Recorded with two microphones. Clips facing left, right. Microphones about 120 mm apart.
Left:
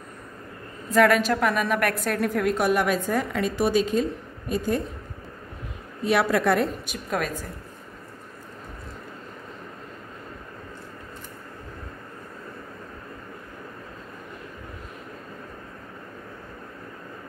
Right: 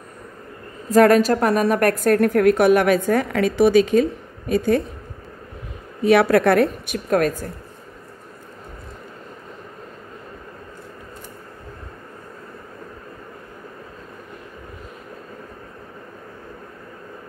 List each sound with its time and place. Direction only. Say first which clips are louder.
0.8 s a woman's voice: right 6 dB; 40° right (ahead or behind); by 4.8 s 75° right (ahead or behind)
6.0 s a woman's voice: right 7 dB; 60° right (ahead or behind)